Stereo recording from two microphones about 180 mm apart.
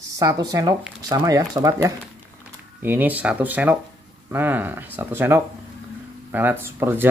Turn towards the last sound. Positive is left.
turn(degrees=-15)  # may be behind; listen again after turning